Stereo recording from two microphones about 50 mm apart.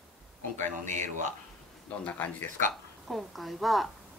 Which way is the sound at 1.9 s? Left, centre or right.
Left.